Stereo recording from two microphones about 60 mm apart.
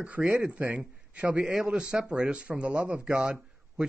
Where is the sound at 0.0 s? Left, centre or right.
Right.